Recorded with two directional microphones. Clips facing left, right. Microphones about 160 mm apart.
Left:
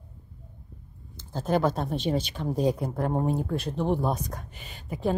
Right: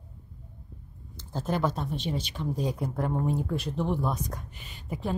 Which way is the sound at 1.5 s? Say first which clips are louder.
Left 4 dB; 55° left (ahead or behind).